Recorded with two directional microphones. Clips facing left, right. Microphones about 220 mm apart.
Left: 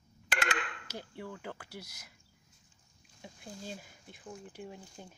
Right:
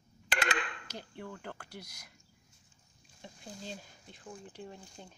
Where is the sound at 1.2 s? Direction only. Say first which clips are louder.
Even; 10° left (ahead or behind).